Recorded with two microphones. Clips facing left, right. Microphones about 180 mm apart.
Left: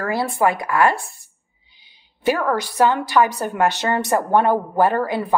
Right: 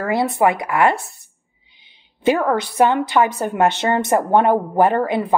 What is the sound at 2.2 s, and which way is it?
A woman's voice, 20° right (ahead or behind).